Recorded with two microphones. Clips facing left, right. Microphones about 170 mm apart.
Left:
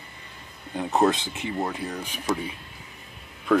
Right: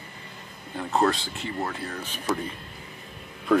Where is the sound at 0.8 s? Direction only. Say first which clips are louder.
Left 2 dB; 20° left (ahead or behind).